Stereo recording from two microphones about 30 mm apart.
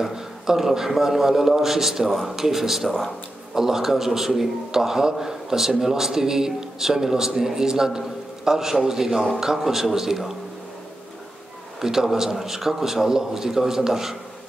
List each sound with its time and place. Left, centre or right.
0.0 s a man's voice: centre
11.8 s a man's voice: centre